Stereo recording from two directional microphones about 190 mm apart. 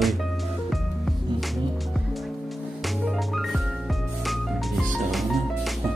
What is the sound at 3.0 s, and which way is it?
Music, centre (ahead or behind).